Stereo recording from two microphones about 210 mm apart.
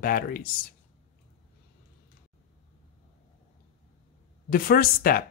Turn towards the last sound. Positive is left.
turn(degrees=45)  # may be behind; listen again after turning